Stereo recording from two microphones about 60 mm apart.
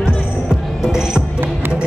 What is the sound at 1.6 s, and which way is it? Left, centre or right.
Basketball bounce, right.